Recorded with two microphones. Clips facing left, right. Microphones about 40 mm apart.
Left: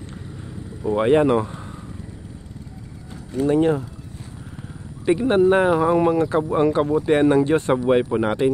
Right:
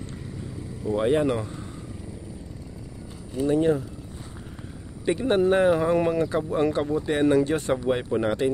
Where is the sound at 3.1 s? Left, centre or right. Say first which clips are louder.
Left 4 dB; left.